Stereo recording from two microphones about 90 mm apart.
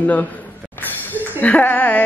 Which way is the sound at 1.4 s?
20° left (ahead or behind).